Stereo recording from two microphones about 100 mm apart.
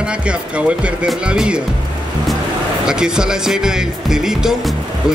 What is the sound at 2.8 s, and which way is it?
Speech, 5° right (ahead or behind).